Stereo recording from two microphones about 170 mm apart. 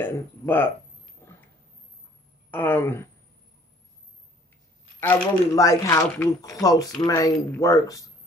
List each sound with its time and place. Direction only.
0.0 s speech: 10° left (ahead or behind)
1.2 s dog: 15° left (ahead or behind)
2.5 s speech: 10° left (ahead or behind)
5.0 s speech: 10° left (ahead or behind)